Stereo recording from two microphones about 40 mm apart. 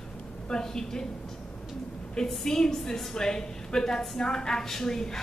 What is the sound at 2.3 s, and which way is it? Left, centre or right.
A woman's voice, centre.